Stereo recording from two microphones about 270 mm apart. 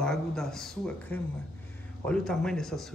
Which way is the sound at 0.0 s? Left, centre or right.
Centre.